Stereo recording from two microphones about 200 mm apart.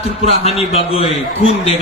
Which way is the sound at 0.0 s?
30° left (ahead or behind).